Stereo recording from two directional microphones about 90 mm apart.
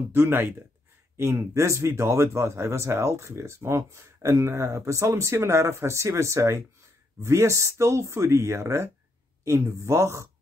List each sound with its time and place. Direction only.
0.1 s a man's voice: 25° right (ahead or behind)